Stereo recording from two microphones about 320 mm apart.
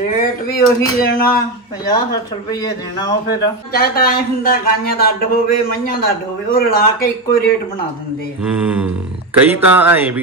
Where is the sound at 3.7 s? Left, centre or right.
Left.